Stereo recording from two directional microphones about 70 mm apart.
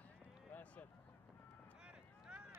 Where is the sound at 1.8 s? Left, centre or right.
Centre.